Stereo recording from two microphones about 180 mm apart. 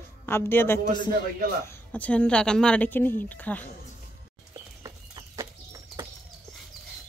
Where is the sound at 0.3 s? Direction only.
10° left (ahead or behind).